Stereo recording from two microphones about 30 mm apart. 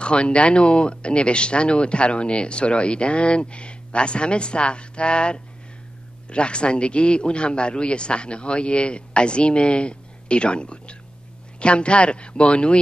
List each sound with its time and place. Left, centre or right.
0.0 s speech: left